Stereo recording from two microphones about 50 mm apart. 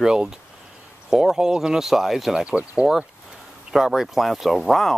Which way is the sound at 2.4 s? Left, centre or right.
Right.